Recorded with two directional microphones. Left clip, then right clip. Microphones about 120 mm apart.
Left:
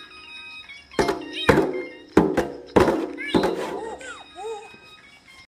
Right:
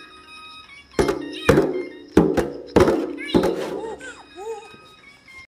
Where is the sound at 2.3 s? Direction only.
25° right (ahead or behind).